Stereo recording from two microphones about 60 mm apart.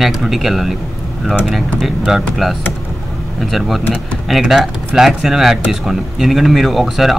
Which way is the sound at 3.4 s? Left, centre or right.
Centre.